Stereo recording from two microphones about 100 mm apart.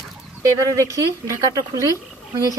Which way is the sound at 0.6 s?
30° right (ahead or behind).